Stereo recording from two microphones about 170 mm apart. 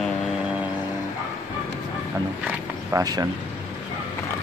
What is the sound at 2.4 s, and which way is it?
Speech, 20° right (ahead or behind).